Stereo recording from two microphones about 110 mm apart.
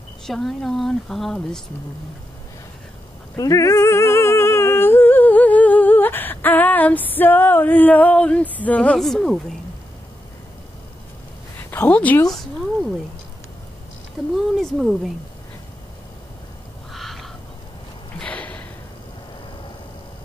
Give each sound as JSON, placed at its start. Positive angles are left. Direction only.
{"t": 0.3, "sound": "a woman's voice", "side_deg": 0}
{"t": 3.3, "sound": "humming", "side_deg": 30}
{"t": 11.7, "sound": "a woman's voice", "side_deg": 15}
{"t": 14.3, "sound": "a woman's voice", "side_deg": 0}
{"t": 16.9, "sound": "fowl", "side_deg": 0}
{"t": 18.2, "sound": "a sound", "side_deg": 15}